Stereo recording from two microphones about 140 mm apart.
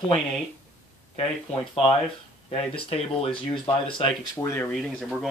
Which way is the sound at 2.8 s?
45° left (ahead or behind).